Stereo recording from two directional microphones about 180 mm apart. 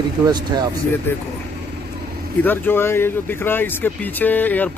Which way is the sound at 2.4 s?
10° left (ahead or behind).